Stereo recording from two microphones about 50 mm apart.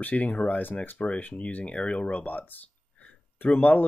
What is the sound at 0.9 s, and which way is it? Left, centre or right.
Speech, left.